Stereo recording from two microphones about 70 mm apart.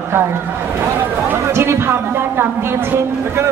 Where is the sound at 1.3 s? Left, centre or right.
Right.